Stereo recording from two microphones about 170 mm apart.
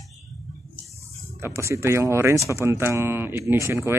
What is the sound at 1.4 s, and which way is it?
Speech, 15° right (ahead or behind).